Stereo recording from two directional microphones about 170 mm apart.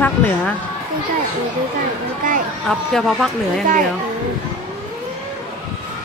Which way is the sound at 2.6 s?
Centre (ahead or behind).